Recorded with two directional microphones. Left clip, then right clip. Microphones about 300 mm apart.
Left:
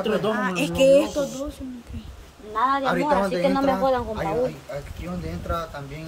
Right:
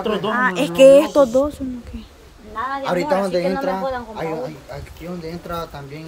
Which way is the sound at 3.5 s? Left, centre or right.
Left.